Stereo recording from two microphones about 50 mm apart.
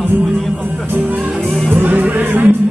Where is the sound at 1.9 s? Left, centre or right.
Right.